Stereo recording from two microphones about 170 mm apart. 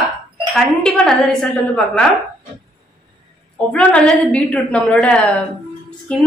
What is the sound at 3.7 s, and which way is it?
A woman's voice, 5° left (ahead or behind).